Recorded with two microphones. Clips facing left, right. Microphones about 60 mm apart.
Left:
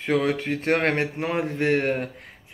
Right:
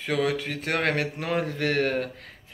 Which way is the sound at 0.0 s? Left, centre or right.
Left.